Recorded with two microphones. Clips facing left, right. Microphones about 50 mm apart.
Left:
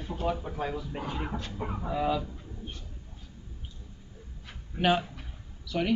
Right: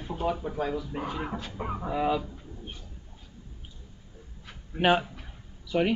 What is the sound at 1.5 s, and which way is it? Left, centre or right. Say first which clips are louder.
Speech: right 2 dB; centre.